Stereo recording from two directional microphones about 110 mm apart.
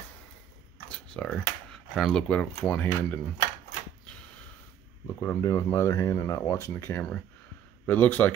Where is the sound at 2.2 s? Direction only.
10° left (ahead or behind).